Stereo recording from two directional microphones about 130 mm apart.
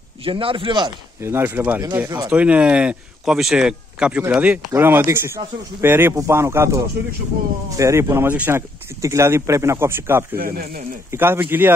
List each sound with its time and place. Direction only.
0.2 s speech: 45° right (ahead or behind)
1.2 s speech: 15° right (ahead or behind)
2.2 s speech: 10° right (ahead or behind)